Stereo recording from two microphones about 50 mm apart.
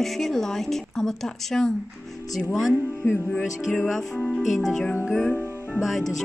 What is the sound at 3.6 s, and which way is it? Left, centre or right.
Speech, centre.